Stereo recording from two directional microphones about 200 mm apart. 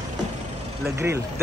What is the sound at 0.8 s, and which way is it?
Speech, 15° right (ahead or behind).